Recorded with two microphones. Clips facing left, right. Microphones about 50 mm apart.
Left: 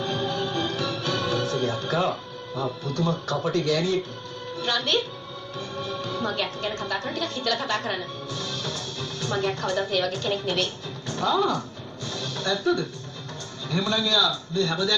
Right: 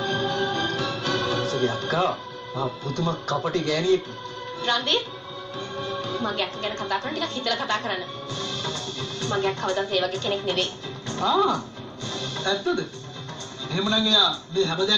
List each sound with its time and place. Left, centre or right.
0.1 s music: right
2.5 s a man's voice: right
12.1 s music: right
13.7 s a man's voice: right